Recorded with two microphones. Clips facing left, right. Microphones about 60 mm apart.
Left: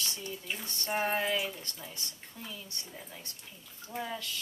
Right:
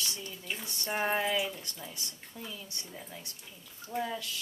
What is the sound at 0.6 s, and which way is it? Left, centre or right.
Speech, centre.